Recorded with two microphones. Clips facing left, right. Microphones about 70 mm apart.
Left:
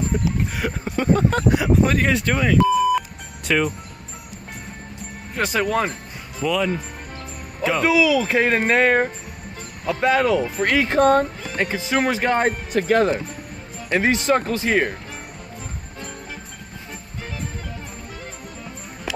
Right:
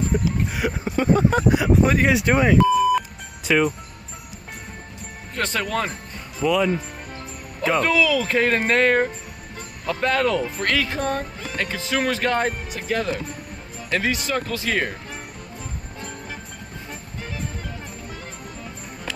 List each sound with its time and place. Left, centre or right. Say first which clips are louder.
0.1 s speech: even; centre
2.5 s beep: left 3 dB; centre
5.3 s speech: left 4 dB; centre
6.4 s speech: right 2 dB; centre
10.9 s speech: left 9 dB; left
11.5 s speech: left 3 dB; centre
12.7 s speech: left 11 dB; left
13.8 s speech: left 5 dB; left